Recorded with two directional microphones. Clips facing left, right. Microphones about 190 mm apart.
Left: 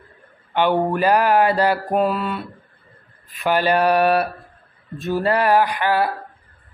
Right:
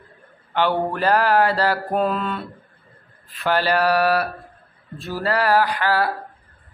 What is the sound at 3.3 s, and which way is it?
A man's voice, 15° left (ahead or behind).